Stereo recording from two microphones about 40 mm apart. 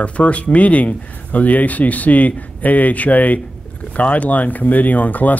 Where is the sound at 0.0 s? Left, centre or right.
Left.